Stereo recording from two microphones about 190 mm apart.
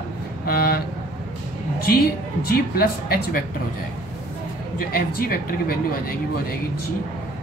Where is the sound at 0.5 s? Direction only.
50° left (ahead or behind).